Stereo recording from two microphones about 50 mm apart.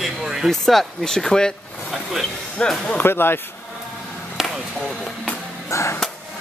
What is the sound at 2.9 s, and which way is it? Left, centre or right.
Speech, left.